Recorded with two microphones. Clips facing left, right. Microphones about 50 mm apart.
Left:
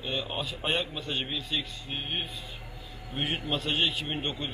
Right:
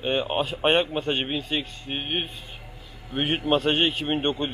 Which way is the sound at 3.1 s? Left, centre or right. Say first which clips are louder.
Right 6 dB; right.